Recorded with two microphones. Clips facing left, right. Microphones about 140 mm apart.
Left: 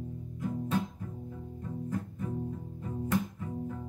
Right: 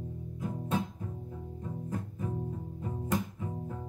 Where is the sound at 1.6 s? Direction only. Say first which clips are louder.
Left 2 dB; 20° right (ahead or behind).